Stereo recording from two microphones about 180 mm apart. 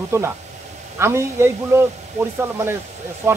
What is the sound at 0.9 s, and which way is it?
Speech, 15° right (ahead or behind).